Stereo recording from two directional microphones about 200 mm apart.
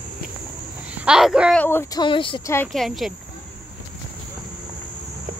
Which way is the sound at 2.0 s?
25° left (ahead or behind).